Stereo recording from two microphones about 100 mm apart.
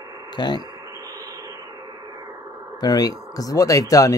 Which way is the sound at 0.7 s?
30° right (ahead or behind).